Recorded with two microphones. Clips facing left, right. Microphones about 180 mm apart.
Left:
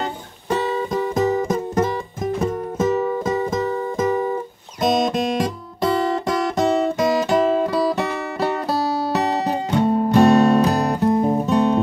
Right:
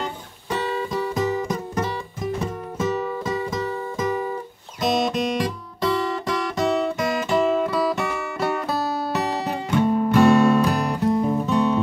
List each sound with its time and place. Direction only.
0.5 s music: 45° left (ahead or behind)
4.8 s guitar: 45° left (ahead or behind)
9.1 s music: 35° left (ahead or behind)